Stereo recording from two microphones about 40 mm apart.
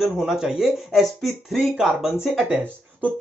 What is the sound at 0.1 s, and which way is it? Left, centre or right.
Speech, centre.